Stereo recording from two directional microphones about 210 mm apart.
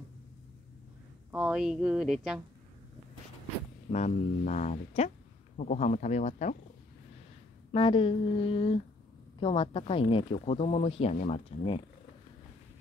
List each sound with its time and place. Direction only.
1.3 s speech: 5° right (ahead or behind)
3.9 s speech: 35° left (ahead or behind)
7.7 s speech: 25° left (ahead or behind)